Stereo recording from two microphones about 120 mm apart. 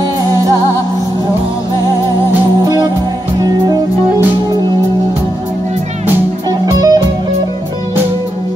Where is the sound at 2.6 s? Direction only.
35° right (ahead or behind).